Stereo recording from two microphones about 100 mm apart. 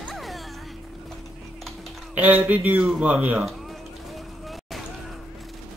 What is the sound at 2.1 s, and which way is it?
Speech, 15° right (ahead or behind).